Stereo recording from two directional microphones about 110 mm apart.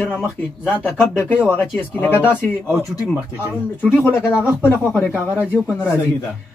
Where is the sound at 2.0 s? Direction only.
20° left (ahead or behind).